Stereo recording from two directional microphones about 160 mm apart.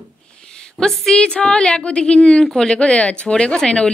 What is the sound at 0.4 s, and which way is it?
A woman's voice, 5° left (ahead or behind).